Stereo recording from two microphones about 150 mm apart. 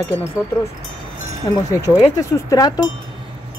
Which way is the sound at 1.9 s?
25° left (ahead or behind).